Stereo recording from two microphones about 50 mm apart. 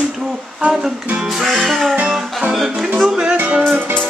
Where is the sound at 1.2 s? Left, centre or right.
Centre.